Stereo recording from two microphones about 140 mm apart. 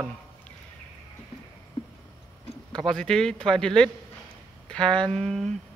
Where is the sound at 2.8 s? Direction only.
5° left (ahead or behind).